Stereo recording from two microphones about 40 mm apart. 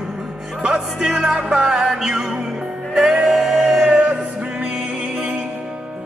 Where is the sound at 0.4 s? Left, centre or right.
Right.